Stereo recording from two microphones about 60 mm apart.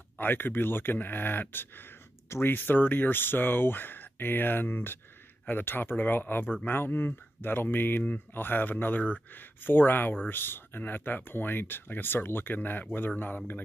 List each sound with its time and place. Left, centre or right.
0.2 s speech: left